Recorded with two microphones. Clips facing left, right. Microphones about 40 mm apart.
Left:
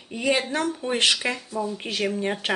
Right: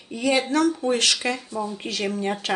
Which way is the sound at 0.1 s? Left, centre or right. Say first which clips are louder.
Right 2 dB; centre.